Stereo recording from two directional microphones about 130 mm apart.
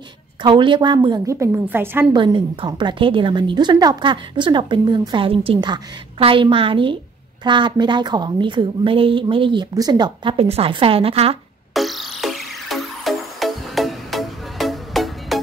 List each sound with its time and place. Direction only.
0.4 s a woman's voice: 40° right (ahead or behind)
1.3 s a woman's voice: 20° right (ahead or behind)
2.1 s a woman's voice: 40° right (ahead or behind)
10.3 s a woman's voice: 50° right (ahead or behind)
11.7 s music: centre (ahead or behind)